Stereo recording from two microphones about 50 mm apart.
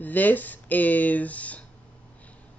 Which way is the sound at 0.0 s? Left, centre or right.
Left.